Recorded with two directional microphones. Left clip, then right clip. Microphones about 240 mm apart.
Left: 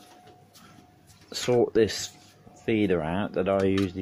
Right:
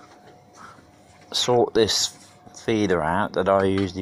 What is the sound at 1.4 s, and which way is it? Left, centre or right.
Speech, centre.